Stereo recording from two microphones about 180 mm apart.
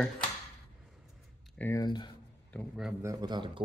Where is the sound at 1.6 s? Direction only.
15° left (ahead or behind).